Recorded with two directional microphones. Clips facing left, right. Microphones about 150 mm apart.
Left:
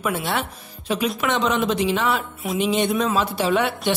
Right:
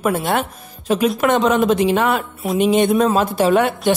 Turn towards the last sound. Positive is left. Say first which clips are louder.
# right 5 dB
turn(degrees=-45)  # may be behind; listen again after turning